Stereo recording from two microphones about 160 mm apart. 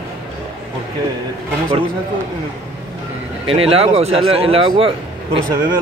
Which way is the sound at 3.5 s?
35° right (ahead or behind).